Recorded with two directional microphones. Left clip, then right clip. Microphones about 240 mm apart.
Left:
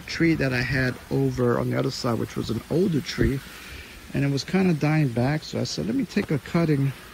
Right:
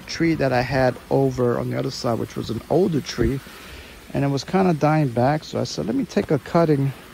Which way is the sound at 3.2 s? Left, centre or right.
Left.